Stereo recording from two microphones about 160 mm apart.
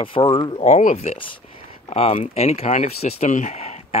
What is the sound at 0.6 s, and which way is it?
Speech, 45° left (ahead or behind).